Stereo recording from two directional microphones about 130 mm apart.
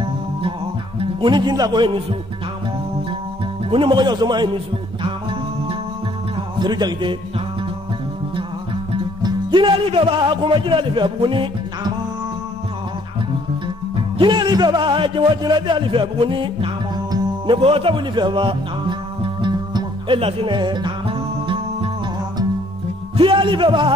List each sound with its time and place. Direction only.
0.9 s speech: 35° right (ahead or behind)
3.7 s a man's voice: 40° right (ahead or behind)
6.6 s a man's voice: 35° right (ahead or behind)
9.2 s a man's voice: 35° right (ahead or behind)
14.1 s a man's voice: 35° right (ahead or behind)
17.6 s music: 45° right (ahead or behind)
23.1 s music: 40° right (ahead or behind)